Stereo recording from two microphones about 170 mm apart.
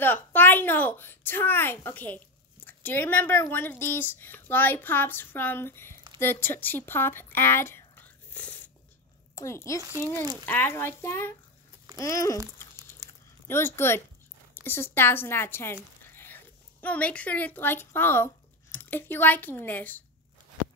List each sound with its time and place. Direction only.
0.0 s a child's voice: 10° left (ahead or behind)
8.3 s biting: 10° left (ahead or behind)
9.3 s a child's voice: 15° left (ahead or behind)
13.0 s a sound: 25° right (ahead or behind)
13.5 s a child's voice: 15° left (ahead or behind)